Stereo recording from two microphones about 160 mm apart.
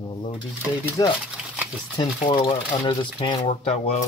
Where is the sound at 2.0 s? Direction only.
30° left (ahead or behind).